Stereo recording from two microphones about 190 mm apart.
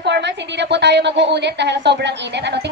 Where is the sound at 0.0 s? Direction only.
65° right (ahead or behind).